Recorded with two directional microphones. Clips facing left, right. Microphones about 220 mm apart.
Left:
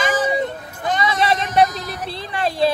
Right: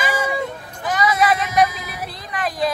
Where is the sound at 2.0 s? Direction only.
30° left (ahead or behind).